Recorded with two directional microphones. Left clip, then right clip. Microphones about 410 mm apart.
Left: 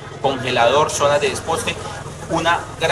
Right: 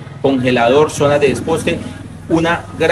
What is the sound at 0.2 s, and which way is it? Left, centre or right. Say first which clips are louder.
Speech: right 3 dB; centre.